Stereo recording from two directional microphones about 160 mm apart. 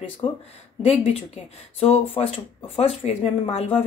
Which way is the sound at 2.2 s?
35° left (ahead or behind).